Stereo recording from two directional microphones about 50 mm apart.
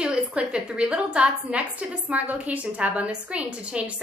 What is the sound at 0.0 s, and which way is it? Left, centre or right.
A woman's voice, right.